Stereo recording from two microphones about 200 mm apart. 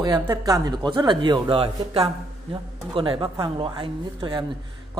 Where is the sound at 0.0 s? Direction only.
20° right (ahead or behind).